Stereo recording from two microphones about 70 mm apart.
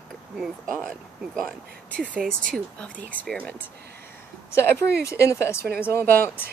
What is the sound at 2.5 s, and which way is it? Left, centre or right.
Speech, centre.